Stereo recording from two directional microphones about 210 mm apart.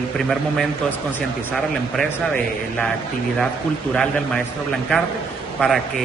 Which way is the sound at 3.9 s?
5° left (ahead or behind).